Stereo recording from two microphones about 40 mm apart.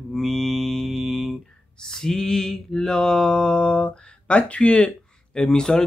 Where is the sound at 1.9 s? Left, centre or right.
Centre.